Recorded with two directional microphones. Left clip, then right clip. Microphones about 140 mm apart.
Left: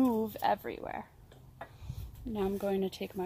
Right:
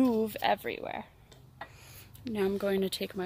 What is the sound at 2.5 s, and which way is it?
Speech, 55° right (ahead or behind).